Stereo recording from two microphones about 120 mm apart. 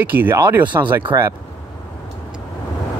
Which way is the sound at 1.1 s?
30° right (ahead or behind).